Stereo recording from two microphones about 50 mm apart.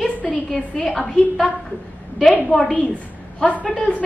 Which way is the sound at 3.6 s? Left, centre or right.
Left.